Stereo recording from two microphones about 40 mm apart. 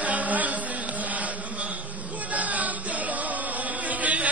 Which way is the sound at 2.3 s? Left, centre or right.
Right.